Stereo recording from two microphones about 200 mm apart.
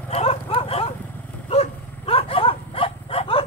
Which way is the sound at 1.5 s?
30° left (ahead or behind).